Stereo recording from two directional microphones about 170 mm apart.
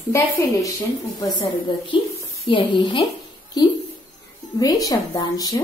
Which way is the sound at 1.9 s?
30° left (ahead or behind).